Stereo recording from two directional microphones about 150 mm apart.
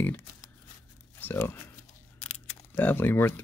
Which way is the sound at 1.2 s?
15° left (ahead or behind).